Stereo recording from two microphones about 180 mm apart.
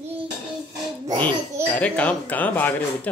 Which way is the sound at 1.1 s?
25° right (ahead or behind).